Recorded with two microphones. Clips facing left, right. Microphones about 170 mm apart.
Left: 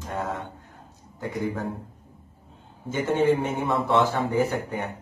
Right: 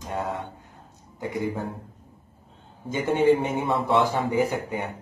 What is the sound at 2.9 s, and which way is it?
Speech, 15° right (ahead or behind).